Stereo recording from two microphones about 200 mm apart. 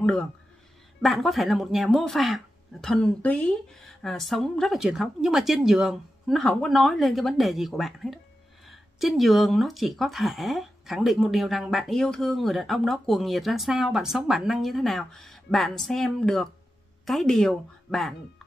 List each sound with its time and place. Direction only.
0.0 s a woman's voice: 5° left (ahead or behind)